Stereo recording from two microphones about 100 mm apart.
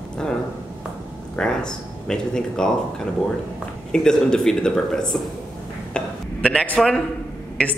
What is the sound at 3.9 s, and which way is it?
Speech, 5° left (ahead or behind).